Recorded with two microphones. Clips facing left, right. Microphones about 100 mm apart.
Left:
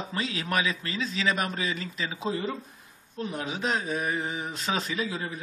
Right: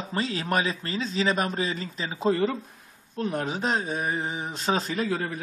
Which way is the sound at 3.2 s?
50° right (ahead or behind).